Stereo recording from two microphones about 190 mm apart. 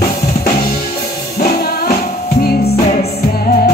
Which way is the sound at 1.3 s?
55° left (ahead or behind).